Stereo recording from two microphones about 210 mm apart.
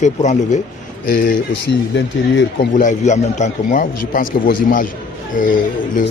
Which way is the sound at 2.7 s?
35° left (ahead or behind).